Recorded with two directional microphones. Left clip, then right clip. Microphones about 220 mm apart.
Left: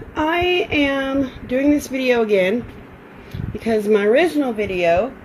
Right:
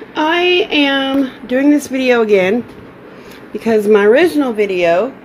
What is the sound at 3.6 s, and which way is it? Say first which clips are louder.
Speech: right 6 dB; 10° right (ahead or behind).